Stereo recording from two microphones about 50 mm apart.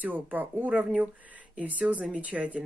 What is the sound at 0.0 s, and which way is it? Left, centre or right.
Speech, right.